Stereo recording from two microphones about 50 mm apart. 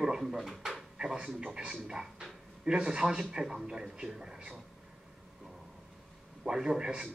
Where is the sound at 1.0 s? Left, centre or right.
Centre.